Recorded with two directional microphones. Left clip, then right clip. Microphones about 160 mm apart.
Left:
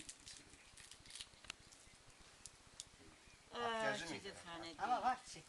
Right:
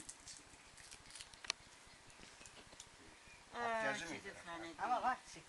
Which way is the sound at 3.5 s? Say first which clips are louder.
Right 1 dB; 35° left (ahead or behind).